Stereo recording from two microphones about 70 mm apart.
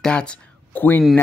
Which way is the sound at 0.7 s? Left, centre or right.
Left.